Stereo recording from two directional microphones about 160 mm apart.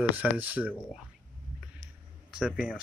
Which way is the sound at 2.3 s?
5° right (ahead or behind).